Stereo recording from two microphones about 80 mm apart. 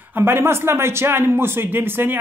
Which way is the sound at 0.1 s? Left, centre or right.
Right.